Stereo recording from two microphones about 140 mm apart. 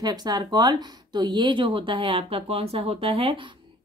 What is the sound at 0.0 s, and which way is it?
Speech, 30° right (ahead or behind).